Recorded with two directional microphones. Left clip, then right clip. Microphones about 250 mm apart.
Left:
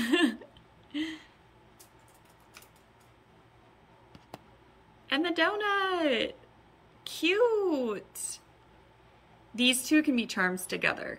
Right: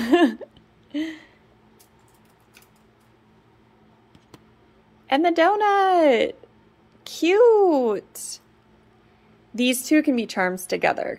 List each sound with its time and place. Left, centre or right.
0.0 s a sound: centre
5.0 s a woman's voice: centre
9.6 s a woman's voice: centre